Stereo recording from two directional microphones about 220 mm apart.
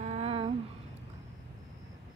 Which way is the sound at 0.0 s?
30° right (ahead or behind).